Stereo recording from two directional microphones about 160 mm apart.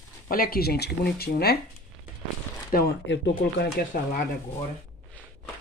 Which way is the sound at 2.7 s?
80° left.